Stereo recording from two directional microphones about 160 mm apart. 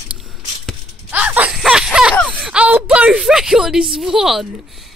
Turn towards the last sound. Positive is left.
turn(degrees=0)  # may be behind; listen again after turning